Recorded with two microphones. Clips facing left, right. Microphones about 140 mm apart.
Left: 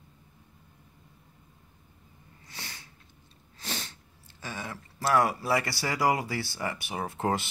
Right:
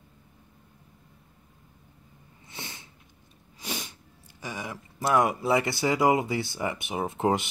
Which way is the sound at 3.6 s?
15° right (ahead or behind).